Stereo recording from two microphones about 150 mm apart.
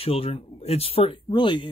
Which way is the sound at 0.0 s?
40° left (ahead or behind).